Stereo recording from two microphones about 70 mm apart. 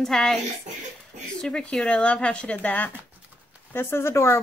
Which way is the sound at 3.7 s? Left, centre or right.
Left.